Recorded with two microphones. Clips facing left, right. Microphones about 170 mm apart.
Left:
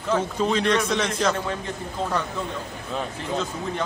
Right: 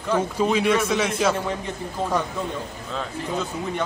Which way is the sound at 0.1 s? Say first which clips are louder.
Right 1 dB; 10° right (ahead or behind).